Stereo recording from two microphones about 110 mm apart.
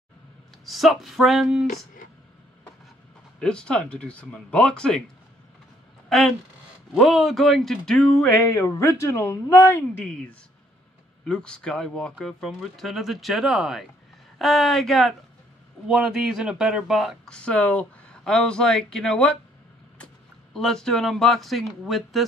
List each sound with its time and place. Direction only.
0.7 s speech: centre (ahead or behind)
3.3 s speech: 10° left (ahead or behind)
6.0 s a sound: centre (ahead or behind)
6.9 s speech: centre (ahead or behind)
8.4 s speech: 25° left (ahead or behind)
10.0 s speech: 10° left (ahead or behind)
20.5 s speech: 5° left (ahead or behind)